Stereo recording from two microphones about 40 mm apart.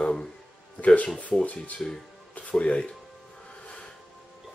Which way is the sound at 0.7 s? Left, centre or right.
Left.